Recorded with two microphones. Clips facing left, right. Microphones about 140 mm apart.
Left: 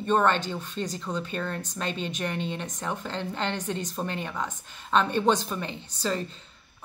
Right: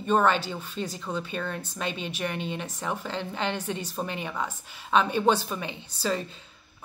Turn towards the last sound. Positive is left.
turn(degrees=-5)  # may be behind; listen again after turning